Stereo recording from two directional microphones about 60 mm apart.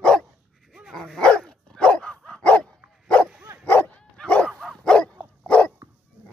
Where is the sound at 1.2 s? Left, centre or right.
Centre.